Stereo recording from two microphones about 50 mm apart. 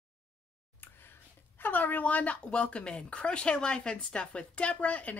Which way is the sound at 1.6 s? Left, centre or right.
Left.